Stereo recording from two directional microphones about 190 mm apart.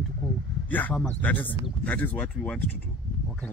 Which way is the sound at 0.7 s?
10° left (ahead or behind).